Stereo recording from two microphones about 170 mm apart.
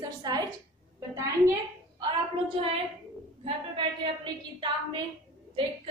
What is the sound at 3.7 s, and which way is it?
A woman's voice, 30° right (ahead or behind).